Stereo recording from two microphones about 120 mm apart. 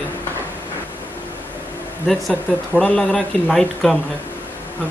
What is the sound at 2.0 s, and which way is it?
Speech, 5° left (ahead or behind).